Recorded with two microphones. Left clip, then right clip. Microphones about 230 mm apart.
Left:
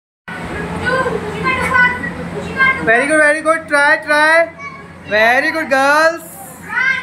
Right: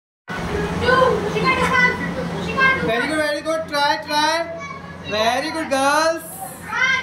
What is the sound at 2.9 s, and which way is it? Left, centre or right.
Speech, centre.